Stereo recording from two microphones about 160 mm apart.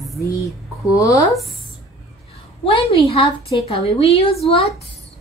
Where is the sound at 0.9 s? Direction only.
20° left (ahead or behind).